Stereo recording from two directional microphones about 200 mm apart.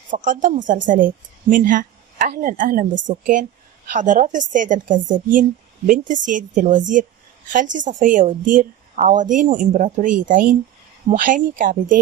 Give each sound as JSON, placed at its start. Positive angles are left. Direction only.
{"t": 0.1, "sound": "a woman's voice", "side_deg": -40}